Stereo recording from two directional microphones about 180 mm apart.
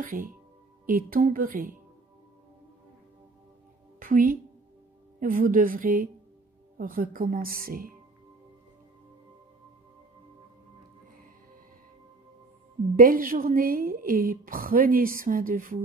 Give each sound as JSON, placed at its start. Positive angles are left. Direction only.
{"t": 0.0, "sound": "a woman's voice", "side_deg": -50}
{"t": 4.0, "sound": "a woman's voice", "side_deg": -50}
{"t": 12.9, "sound": "a woman's voice", "side_deg": -50}